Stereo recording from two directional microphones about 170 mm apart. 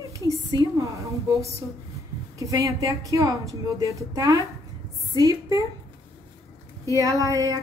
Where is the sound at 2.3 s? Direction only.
20° right (ahead or behind).